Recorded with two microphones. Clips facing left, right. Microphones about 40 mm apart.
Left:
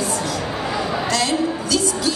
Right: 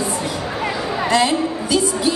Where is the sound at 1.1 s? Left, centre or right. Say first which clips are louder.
Right 5 dB; centre.